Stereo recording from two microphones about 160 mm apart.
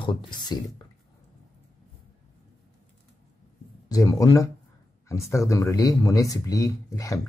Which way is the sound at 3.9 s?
20° left (ahead or behind).